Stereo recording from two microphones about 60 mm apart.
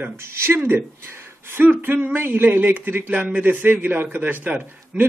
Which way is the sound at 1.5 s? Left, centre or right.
Right.